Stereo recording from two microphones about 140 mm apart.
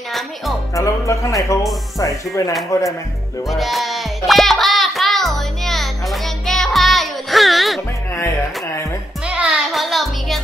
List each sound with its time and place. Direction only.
0.7 s speech: 20° left (ahead or behind)
3.4 s music: centre (ahead or behind)
9.2 s music: 10° right (ahead or behind)